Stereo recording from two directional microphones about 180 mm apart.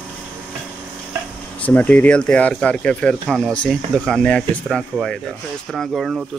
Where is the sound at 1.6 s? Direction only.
10° left (ahead or behind).